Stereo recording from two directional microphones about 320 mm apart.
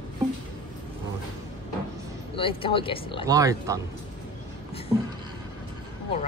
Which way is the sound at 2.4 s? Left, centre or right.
Centre.